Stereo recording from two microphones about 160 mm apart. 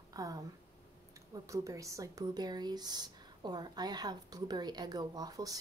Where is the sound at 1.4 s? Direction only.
20° right (ahead or behind).